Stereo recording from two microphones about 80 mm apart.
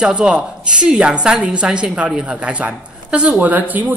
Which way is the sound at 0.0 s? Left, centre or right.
Centre.